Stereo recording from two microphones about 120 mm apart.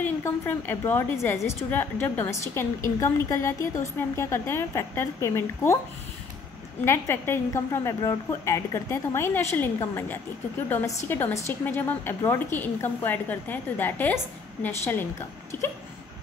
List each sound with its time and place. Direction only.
0.0 s a woman's voice: 15° left (ahead or behind)
6.8 s a woman's voice: 20° left (ahead or behind)